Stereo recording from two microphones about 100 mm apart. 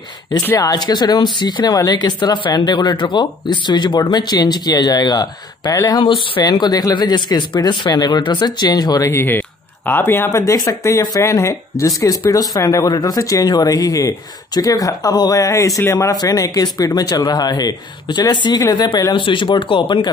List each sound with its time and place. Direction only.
0.6 s speech: 40° left (ahead or behind); by 6.4 s 55° left (ahead or behind)
6.4 s speech: 45° left (ahead or behind)
9.1 s speech: 20° left (ahead or behind)
19.1 s speech: 55° left (ahead or behind)